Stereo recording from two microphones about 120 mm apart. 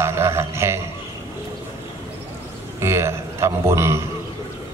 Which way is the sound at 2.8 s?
20° right (ahead or behind).